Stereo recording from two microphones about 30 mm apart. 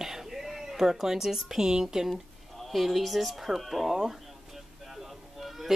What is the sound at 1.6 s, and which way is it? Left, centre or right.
Speech, centre.